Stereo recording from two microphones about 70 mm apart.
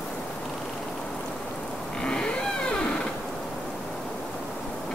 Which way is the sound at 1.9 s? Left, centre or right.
Centre.